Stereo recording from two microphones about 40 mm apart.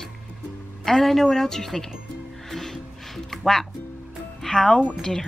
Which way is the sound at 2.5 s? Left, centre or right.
Centre.